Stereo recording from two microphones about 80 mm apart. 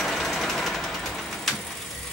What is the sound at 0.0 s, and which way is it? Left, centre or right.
Vehicle, centre.